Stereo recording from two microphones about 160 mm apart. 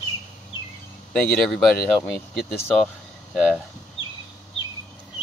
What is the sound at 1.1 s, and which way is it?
Speech, 5° left (ahead or behind).